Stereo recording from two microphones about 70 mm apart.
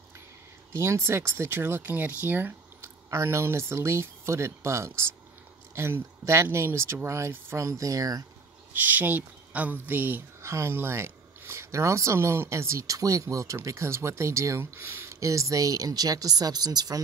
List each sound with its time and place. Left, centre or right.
0.7 s speech: right
1.9 s speech: right
2.8 s speech: right
8.7 s speech: right
10.4 s speech: right
14.8 s speech: right
15.1 s speech: right